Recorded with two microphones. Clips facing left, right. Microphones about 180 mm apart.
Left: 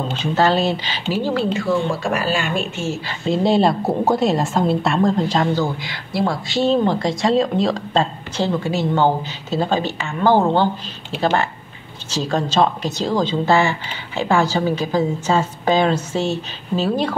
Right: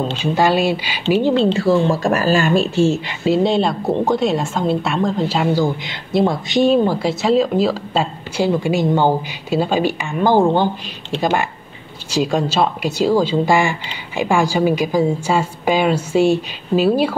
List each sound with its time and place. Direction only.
0.2 s speech: 10° right (ahead or behind)
1.1 s speech: 20° right (ahead or behind)
3.3 s speech: centre (ahead or behind)